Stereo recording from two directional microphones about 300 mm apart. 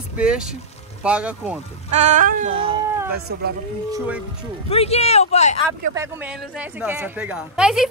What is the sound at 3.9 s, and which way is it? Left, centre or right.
Speech, centre.